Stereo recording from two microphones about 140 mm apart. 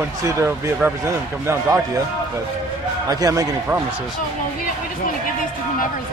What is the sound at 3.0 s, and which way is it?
Speech, 25° right (ahead or behind).